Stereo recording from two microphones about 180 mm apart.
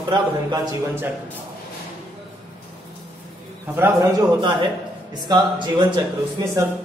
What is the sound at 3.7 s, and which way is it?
Speech, 10° right (ahead or behind).